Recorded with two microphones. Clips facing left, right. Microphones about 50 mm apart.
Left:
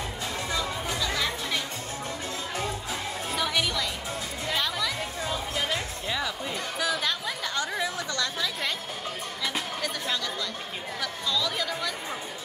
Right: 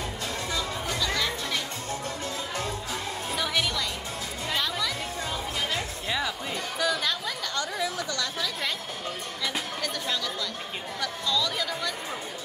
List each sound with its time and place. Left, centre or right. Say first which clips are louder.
0.5 s music: left 1 dB; centre
3.3 s music: left 1 dB; centre
4.6 s chatter: even; centre
6.0 s music: right 1 dB; centre
6.8 s chatter: right 1 dB; centre
7.4 s chatter: left 1 dB; centre
9.4 s music: left 1 dB; centre
11.0 s chatter: right 2 dB; centre